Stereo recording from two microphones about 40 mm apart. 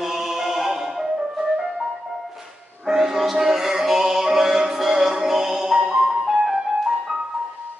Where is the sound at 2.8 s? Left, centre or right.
Centre.